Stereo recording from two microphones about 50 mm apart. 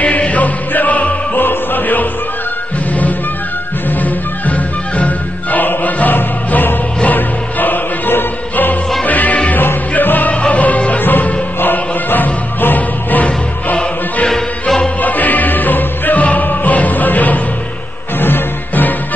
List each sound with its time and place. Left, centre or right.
0.0 s music: left
1.4 s music: left
4.0 s music: left
14.2 s music: centre
15.0 s music: left